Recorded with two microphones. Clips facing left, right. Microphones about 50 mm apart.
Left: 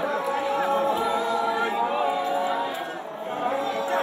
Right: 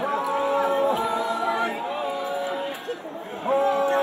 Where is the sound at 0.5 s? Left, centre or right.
Left.